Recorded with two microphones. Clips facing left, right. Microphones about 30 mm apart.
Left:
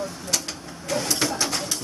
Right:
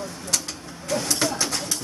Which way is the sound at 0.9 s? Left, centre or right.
Centre.